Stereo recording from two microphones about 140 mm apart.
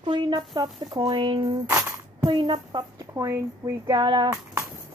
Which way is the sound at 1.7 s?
20° right (ahead or behind).